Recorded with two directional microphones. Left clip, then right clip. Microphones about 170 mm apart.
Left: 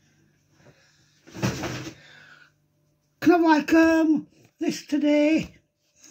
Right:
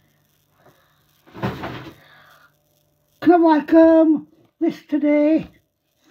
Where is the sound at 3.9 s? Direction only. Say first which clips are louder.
Right 7 dB; 20° left (ahead or behind).